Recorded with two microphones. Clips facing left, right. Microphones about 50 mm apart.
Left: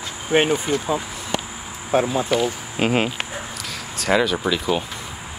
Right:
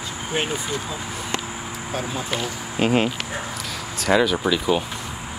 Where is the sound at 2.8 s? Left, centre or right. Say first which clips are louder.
Right 1 dB; centre.